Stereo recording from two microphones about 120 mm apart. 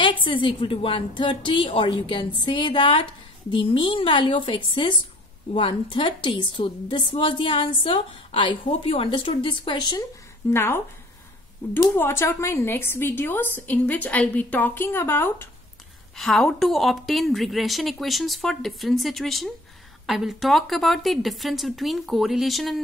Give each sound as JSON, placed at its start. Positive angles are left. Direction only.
{"t": 0.2, "sound": "a woman's voice", "side_deg": 45}
{"t": 10.5, "sound": "speech", "side_deg": 20}
{"t": 11.8, "sound": "a woman's voice", "side_deg": 20}
{"t": 16.2, "sound": "a woman's voice", "side_deg": 5}